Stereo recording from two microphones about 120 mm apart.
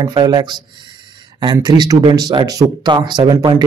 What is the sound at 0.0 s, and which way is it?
Speech, 35° right (ahead or behind).